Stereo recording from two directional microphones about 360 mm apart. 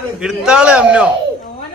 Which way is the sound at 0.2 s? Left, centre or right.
Centre.